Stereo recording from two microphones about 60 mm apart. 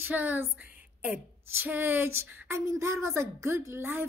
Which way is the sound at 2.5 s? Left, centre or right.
Right.